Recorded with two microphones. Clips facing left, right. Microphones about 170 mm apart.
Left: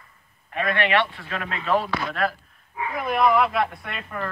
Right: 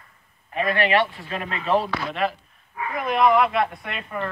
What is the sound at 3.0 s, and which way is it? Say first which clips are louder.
Speech: right 1 dB; 5° left (ahead or behind).